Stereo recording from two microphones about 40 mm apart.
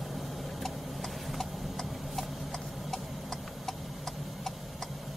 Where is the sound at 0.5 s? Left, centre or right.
Centre.